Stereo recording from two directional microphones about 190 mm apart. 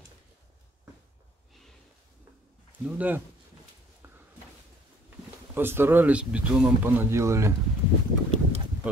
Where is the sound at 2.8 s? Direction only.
10° right (ahead or behind).